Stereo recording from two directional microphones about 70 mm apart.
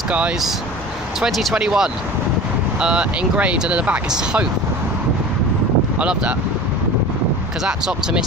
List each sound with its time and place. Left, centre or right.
1.2 s speech: centre
5.9 s speech: centre
7.6 s speech: centre